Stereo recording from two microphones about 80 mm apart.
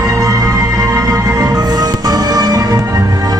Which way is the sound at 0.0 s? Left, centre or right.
Right.